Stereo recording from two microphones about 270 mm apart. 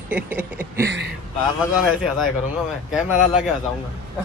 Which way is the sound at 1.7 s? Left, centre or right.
Centre.